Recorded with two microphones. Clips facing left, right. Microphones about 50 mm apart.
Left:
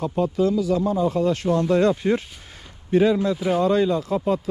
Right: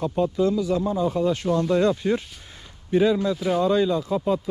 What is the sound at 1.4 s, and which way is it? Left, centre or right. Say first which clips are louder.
Speech: left 2 dB; left.